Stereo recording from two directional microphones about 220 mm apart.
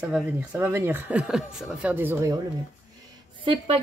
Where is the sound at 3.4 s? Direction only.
25° right (ahead or behind).